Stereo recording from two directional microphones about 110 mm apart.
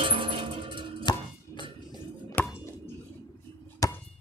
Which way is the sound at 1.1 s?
40° left (ahead or behind).